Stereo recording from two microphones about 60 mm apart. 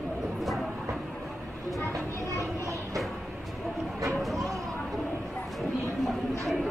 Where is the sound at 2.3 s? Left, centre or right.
Right.